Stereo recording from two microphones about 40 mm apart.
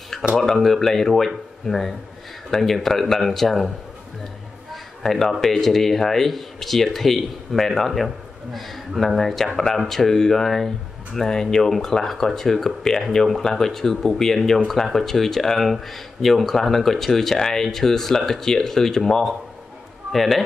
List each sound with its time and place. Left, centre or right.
0.1 s a sound: centre
0.6 s speech: centre
5.0 s speech: centre
20.1 s a man's voice: centre